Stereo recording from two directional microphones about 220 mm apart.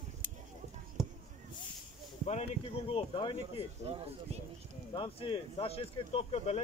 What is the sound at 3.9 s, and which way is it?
Speech, 30° right (ahead or behind).